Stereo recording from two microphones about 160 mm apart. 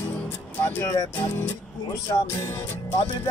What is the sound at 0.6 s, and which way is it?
Speech, 15° left (ahead or behind).